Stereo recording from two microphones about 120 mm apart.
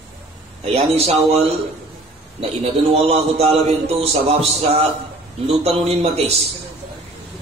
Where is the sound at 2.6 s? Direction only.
55° right (ahead or behind).